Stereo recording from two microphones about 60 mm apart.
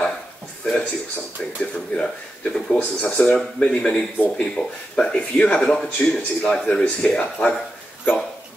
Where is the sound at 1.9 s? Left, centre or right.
Left.